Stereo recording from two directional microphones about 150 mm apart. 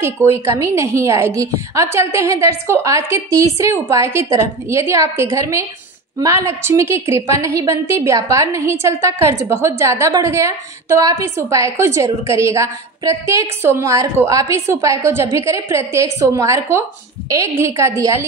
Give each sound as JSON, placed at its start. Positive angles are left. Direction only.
{"t": 0.0, "sound": "a woman's voice", "side_deg": -20}